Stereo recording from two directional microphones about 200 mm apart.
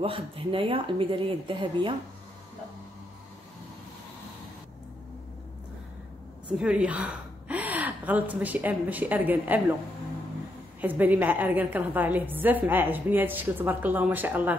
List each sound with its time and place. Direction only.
0.0 s speech: 25° right (ahead or behind)
6.5 s a woman's voice: 5° right (ahead or behind)
10.8 s a woman's voice: 10° right (ahead or behind)